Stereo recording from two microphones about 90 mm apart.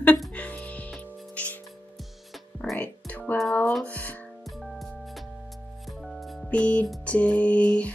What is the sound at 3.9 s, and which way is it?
Speech, 15° left (ahead or behind).